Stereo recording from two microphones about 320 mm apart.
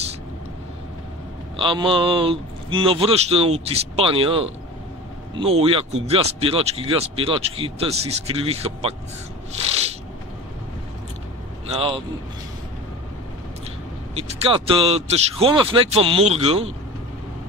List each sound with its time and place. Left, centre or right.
1.6 s speech: centre
9.5 s a sound: centre
11.7 s speech: centre
14.1 s speech: centre